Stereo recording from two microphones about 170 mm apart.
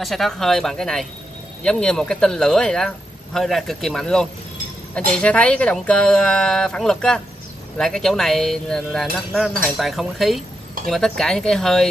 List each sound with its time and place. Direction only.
0.0 s speech: centre (ahead or behind)